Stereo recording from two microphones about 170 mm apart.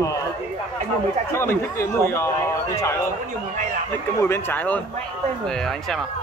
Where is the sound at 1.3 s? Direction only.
15° left (ahead or behind).